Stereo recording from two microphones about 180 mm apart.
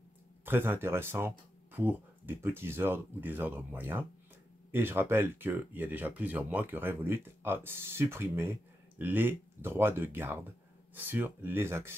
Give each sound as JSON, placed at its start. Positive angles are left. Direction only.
{"t": 0.5, "sound": "speech", "side_deg": -10}